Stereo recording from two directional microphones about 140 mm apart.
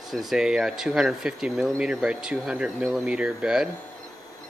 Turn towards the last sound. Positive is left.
turn(degrees=-5)  # may be behind; listen again after turning